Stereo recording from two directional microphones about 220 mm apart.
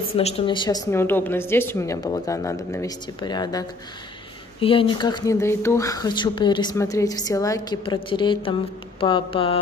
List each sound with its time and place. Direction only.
0.1 s a woman's voice: 30° left (ahead or behind)